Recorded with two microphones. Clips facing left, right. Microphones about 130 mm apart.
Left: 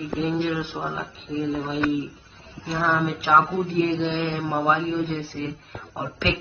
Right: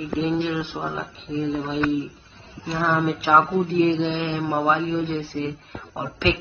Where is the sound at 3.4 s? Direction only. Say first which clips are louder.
Right 2 dB; 20° right (ahead or behind).